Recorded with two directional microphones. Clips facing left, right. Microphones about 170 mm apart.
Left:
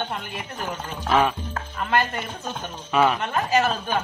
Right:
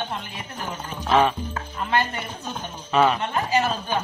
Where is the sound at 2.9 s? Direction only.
Centre (ahead or behind).